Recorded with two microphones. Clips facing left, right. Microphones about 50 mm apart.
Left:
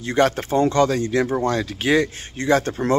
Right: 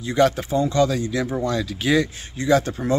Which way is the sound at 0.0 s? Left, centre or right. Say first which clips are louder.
Even; left.